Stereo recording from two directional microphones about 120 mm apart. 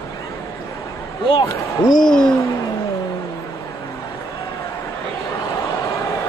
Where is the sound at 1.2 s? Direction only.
50° left (ahead or behind).